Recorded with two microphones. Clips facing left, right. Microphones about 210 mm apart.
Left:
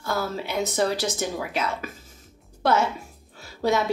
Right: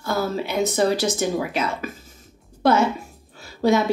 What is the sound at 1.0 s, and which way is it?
Speech, 15° right (ahead or behind).